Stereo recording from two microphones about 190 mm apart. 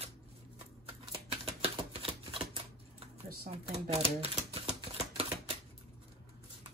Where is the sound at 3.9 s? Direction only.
30° right (ahead or behind).